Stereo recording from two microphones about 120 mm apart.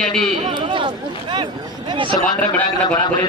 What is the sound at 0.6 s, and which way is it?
Speech, 40° right (ahead or behind).